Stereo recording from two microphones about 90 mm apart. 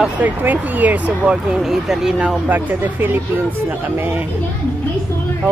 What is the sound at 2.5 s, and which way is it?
Speech, 20° right (ahead or behind).